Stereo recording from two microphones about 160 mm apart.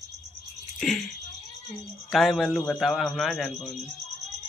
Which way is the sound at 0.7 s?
Centre (ahead or behind).